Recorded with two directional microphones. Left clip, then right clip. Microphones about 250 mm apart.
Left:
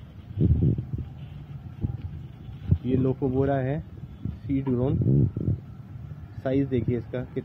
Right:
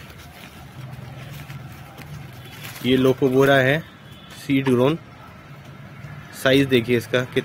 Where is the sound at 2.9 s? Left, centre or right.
Right.